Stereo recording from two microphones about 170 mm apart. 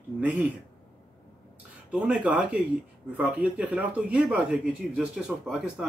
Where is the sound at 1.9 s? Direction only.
5° right (ahead or behind).